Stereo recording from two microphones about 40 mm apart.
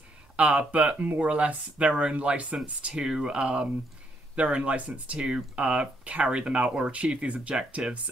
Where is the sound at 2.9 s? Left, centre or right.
Centre.